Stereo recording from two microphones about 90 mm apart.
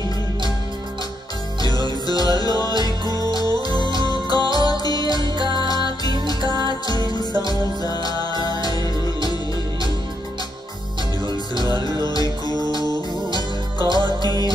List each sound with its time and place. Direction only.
1.6 s music: 50° left (ahead or behind)
3.1 s music: 45° right (ahead or behind)
3.3 s music: 45° left (ahead or behind)
6.7 s music: 50° left (ahead or behind)
11.6 s music: 45° left (ahead or behind)
13.7 s music: 50° left (ahead or behind)